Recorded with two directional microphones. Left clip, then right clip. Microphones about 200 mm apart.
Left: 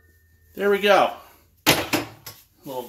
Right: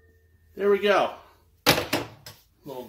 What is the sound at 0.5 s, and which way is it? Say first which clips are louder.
Speech: left 3 dB; 35° left (ahead or behind).